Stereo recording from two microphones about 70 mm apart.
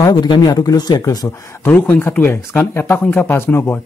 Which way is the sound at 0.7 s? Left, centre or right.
Left.